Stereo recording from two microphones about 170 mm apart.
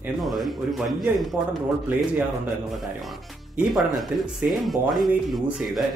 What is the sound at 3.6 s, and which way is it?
A man's voice, 5° right (ahead or behind).